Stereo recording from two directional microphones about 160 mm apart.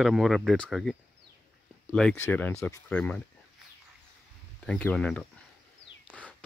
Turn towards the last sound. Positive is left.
turn(degrees=10)  # may be behind; listen again after turning